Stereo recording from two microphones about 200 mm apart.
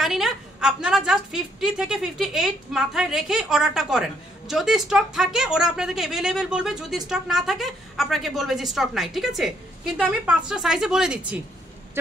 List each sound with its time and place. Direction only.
0.0 s a woman's voice: centre (ahead or behind)